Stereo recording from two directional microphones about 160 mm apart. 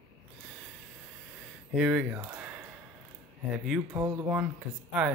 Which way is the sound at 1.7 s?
5° right (ahead or behind).